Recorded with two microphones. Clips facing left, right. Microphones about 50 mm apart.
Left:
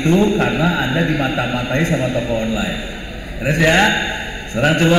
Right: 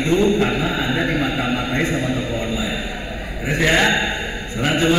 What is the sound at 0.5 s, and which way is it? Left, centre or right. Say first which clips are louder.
A man's voice: left 3 dB; left.